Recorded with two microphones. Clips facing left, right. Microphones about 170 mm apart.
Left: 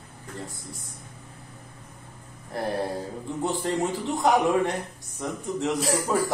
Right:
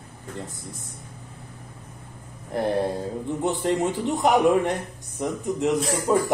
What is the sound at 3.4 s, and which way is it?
Speech, 20° right (ahead or behind).